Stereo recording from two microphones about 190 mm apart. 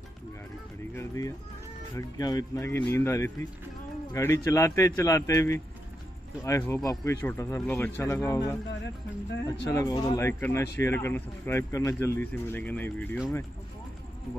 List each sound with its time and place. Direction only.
0.9 s speech: 15° left (ahead or behind)
9.7 s speech: 20° left (ahead or behind)